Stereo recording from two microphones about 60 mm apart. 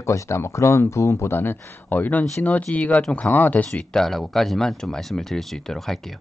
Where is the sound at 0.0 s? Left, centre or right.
Left.